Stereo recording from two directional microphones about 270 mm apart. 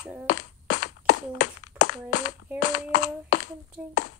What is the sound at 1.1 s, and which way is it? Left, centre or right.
A child's voice, left.